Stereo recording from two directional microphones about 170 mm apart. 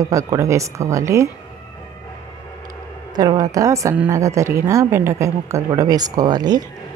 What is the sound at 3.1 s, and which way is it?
A woman's voice, 20° right (ahead or behind).